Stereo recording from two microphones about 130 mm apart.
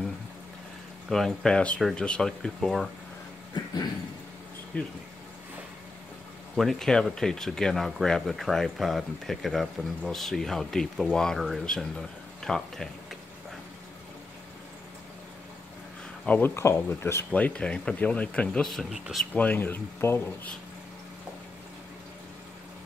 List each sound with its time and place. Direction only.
1.1 s speech: 5° left (ahead or behind)
4.7 s speech: 10° left (ahead or behind)
6.5 s speech: centre (ahead or behind)
16.3 s speech: 15° left (ahead or behind)
19.3 s speech: 15° left (ahead or behind)